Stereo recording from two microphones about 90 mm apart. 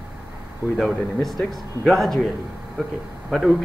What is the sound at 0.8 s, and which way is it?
Speech, centre (ahead or behind).